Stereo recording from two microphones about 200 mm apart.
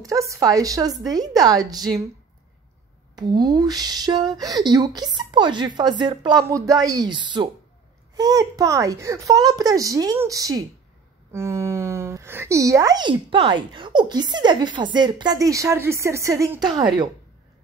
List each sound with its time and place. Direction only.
0.0 s speech: 15° right (ahead or behind)
3.2 s a woman's voice: 20° right (ahead or behind)